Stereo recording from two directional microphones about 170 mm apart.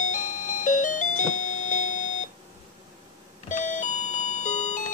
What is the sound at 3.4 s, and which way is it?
Doorbell, 45° left (ahead or behind).